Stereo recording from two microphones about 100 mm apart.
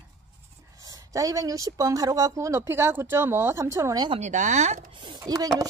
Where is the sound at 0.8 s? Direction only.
35° right (ahead or behind).